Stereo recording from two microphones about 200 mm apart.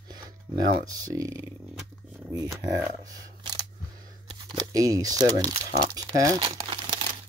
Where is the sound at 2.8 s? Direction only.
15° right (ahead or behind).